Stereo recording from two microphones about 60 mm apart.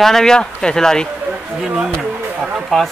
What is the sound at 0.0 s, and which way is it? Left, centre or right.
Speech, centre.